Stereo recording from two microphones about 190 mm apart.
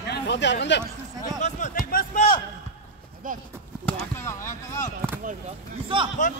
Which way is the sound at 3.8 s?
15° left (ahead or behind).